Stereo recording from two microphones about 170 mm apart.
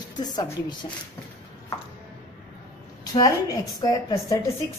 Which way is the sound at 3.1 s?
20° left (ahead or behind).